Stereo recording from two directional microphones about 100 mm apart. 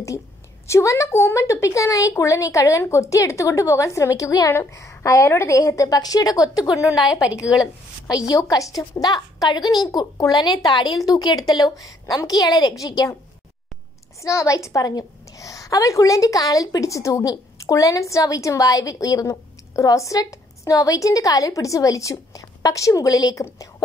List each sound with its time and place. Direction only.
0.7 s a woman's voice: 30° left (ahead or behind)
7.0 s a woman's voice: 5° right (ahead or behind)
8.1 s a woman's voice: 35° left (ahead or behind)
14.2 s a woman's voice: 30° left (ahead or behind)